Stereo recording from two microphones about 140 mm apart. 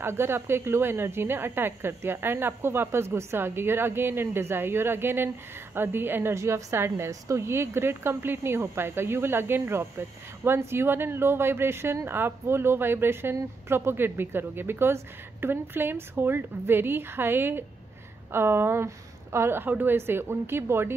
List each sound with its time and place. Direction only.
0.0 s a woman's voice: 15° right (ahead or behind)